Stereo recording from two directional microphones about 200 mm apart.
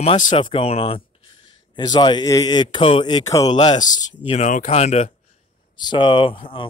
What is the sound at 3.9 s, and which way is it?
Speech, 35° left (ahead or behind).